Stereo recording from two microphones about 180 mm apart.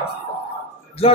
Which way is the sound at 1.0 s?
35° left (ahead or behind).